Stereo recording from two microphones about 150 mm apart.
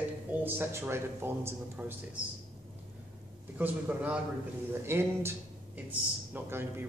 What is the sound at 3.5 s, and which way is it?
A man's voice, 10° right (ahead or behind).